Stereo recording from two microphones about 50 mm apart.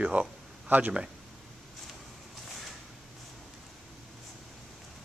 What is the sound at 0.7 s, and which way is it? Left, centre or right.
Speech, right.